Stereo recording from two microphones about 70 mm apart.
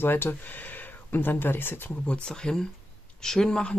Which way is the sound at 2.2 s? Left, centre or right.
Centre.